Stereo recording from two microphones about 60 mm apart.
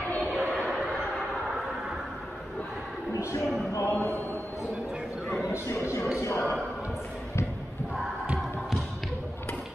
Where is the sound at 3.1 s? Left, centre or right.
Left.